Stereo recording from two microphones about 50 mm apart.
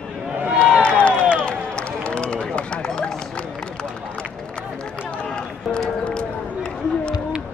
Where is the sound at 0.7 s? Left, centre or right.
Left.